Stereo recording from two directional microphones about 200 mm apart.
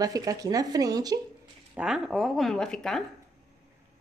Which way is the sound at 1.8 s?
5° right (ahead or behind).